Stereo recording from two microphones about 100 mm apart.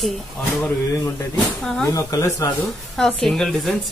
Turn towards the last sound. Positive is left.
turn(degrees=5)  # may be behind; listen again after turning